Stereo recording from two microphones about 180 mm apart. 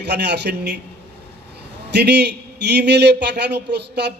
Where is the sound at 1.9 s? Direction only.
70° right (ahead or behind).